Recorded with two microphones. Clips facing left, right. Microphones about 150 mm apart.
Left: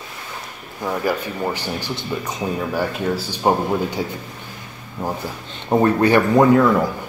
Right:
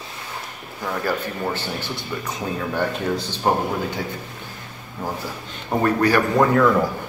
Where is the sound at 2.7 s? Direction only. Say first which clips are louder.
Left 1 dB; 5° left (ahead or behind).